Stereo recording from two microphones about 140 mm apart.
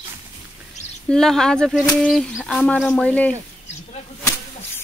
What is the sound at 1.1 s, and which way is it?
Speech, 5° left (ahead or behind).